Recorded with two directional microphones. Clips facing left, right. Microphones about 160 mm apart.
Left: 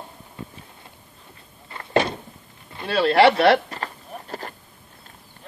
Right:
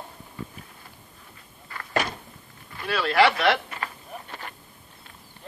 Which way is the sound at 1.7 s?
25° left (ahead or behind).